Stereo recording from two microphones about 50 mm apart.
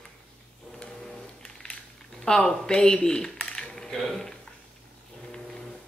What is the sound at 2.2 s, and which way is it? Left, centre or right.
Speech, centre.